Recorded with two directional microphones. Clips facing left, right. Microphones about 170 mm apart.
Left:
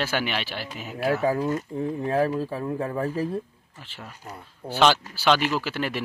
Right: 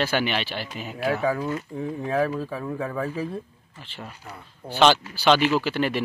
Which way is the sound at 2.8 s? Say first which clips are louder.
Even; 35° left (ahead or behind).